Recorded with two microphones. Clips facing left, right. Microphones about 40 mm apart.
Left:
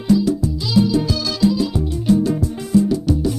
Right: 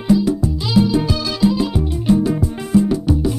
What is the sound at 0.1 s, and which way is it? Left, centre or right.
Music, centre.